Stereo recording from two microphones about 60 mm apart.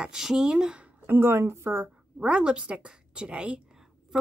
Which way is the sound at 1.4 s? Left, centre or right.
Right.